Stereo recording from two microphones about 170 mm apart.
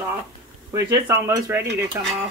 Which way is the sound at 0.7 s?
15° right (ahead or behind).